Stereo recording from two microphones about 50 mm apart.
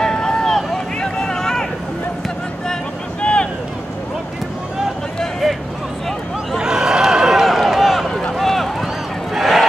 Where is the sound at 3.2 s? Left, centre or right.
Left.